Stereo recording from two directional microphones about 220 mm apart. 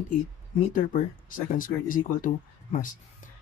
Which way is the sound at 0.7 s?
40° left (ahead or behind).